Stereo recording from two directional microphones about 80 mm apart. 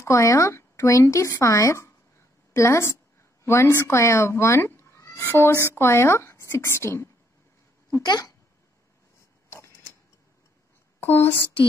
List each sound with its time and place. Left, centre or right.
0.0 s speech: left
8.0 s speech: left
11.0 s speech: left